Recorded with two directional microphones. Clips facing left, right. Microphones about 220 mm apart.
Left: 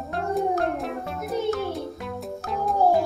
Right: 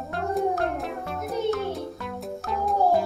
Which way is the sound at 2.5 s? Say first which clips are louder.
Left 1 dB; centre (ahead or behind).